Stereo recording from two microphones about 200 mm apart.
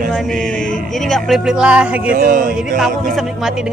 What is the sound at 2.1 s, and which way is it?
Speech, 45° right (ahead or behind).